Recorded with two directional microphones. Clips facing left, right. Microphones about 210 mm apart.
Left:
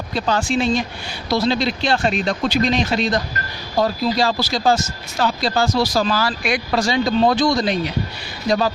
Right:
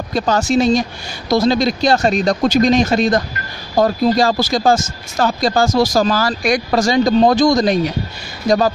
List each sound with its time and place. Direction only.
0.1 s speech: 45° right (ahead or behind)